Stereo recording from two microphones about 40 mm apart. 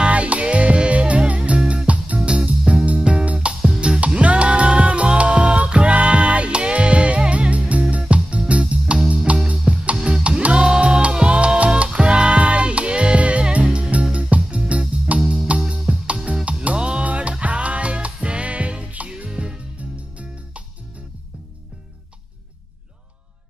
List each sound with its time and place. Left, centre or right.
0.0 s music: right
15.1 s music: right
16.7 s music: right